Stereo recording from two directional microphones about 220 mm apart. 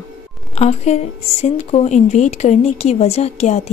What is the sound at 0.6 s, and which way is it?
Speech, 30° left (ahead or behind).